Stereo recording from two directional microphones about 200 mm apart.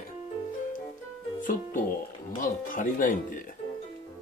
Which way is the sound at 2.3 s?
40° left (ahead or behind).